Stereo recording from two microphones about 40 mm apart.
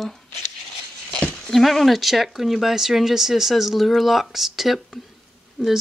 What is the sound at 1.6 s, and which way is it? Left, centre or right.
Speech, centre.